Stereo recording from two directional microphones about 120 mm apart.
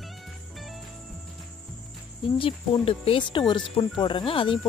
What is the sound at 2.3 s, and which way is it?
Speech, 50° left (ahead or behind).